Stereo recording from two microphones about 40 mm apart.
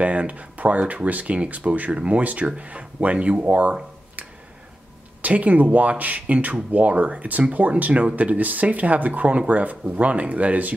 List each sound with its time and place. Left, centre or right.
0.0 s speech: right
5.2 s speech: right